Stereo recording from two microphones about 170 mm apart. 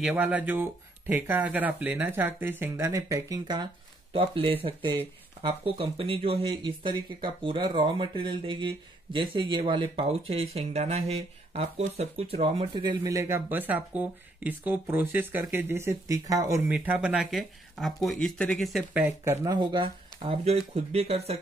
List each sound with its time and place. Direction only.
0.0 s speech: 10° right (ahead or behind)
19.2 s speech: 20° right (ahead or behind); by 21.4 s 35° right (ahead or behind)